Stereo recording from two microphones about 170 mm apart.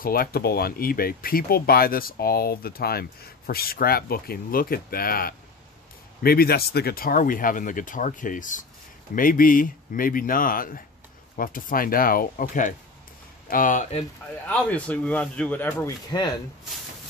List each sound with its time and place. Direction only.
0.0 s speech: 60° left (ahead or behind)
14.5 s speech: 5° left (ahead or behind)
16.1 s speech: 20° left (ahead or behind)